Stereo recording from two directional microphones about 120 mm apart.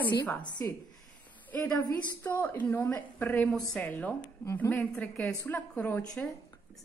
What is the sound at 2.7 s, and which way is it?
A woman's voice, 15° left (ahead or behind).